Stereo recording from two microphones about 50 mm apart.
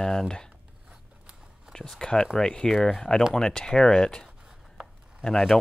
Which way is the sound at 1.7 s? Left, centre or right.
Centre.